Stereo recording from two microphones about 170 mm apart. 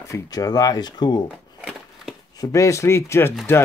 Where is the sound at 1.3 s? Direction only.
5° right (ahead or behind).